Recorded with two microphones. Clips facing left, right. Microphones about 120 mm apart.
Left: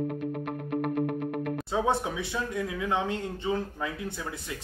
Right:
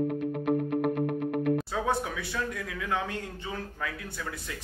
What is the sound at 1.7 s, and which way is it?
Speech, 20° left (ahead or behind).